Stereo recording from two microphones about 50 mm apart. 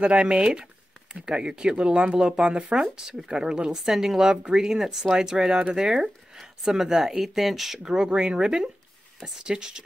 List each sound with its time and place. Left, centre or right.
0.0 s speech: centre
7.8 s speech: centre